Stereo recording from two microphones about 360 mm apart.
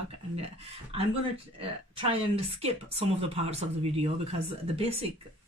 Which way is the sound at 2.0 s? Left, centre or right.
Centre.